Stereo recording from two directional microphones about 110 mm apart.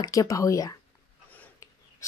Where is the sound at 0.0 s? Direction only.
30° left (ahead or behind).